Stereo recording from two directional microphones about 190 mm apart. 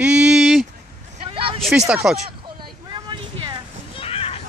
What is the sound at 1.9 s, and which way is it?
Speech, 5° right (ahead or behind).